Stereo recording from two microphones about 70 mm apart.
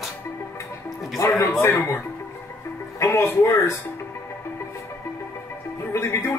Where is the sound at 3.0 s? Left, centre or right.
Left.